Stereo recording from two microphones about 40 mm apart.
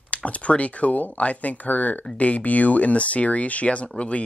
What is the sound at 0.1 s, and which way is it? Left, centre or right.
Speech, left.